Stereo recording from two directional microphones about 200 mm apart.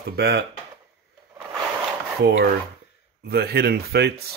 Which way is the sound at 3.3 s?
50° right (ahead or behind).